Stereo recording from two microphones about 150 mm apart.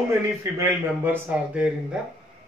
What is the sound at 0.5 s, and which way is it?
Speech, 15° right (ahead or behind).